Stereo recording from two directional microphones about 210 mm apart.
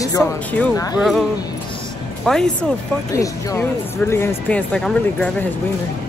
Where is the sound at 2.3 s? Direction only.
5° left (ahead or behind).